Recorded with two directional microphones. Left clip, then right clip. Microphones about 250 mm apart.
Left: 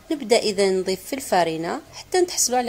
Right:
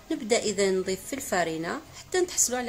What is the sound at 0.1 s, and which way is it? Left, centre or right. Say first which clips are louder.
A woman's voice: left 6 dB; centre.